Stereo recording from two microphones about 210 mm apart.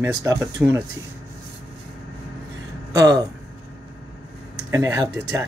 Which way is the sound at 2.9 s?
15° right (ahead or behind).